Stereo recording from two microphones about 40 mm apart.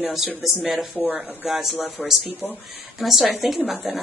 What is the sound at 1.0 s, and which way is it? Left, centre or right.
Speech, right.